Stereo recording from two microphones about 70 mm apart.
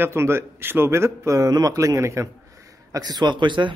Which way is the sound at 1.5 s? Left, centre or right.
Right.